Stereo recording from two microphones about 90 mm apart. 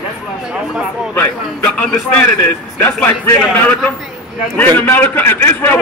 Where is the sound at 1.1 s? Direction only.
15° left (ahead or behind).